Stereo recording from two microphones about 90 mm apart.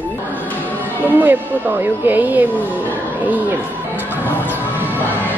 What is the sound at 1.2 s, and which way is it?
Speech, 20° right (ahead or behind).